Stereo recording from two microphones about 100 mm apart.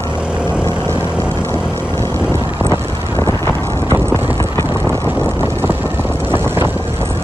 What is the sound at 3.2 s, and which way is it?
Wind noise, 25° left (ahead or behind).